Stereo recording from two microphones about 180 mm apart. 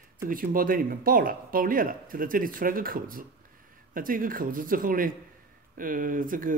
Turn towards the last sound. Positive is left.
turn(degrees=-50)  # may be behind; listen again after turning